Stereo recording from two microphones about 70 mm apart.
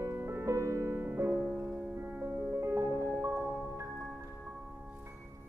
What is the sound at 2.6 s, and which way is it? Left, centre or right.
Music, right.